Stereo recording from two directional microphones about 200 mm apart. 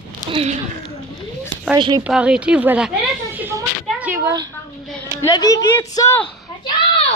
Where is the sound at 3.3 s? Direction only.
10° right (ahead or behind).